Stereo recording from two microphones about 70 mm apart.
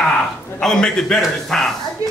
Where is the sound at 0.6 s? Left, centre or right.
Centre.